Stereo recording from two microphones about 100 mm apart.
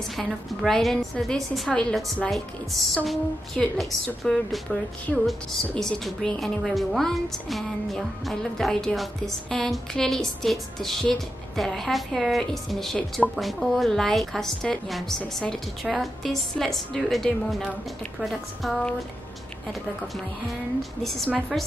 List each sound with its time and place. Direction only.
0.1 s a woman's voice: centre (ahead or behind)
21.0 s speech: centre (ahead or behind)